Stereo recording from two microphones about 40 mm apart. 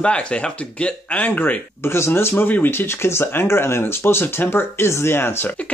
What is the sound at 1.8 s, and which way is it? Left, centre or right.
Speech, left.